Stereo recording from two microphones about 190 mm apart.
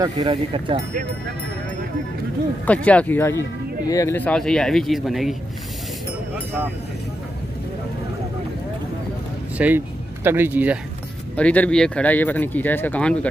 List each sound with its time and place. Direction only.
0.3 s speech: 30° right (ahead or behind)
2.6 s speech: 10° left (ahead or behind)
9.6 s speech: 10° right (ahead or behind)
11.3 s speech: 5° left (ahead or behind)